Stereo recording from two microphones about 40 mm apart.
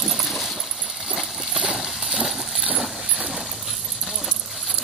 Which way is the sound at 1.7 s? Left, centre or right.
Centre.